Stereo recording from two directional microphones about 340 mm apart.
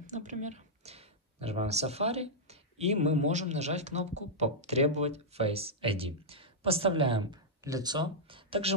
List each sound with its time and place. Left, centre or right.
0.0 s speech: right